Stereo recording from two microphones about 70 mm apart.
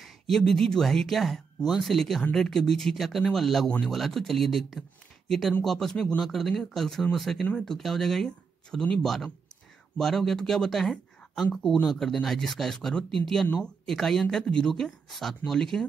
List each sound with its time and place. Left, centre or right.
0.0 s speech: centre